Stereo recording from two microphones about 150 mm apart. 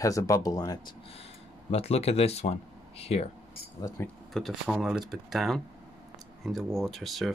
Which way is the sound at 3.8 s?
15° left (ahead or behind).